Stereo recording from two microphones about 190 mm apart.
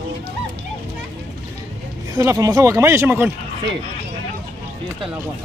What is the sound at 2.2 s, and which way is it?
Speech, 15° right (ahead or behind).